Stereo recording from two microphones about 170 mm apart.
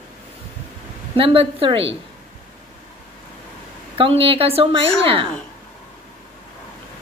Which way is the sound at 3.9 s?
30° right (ahead or behind).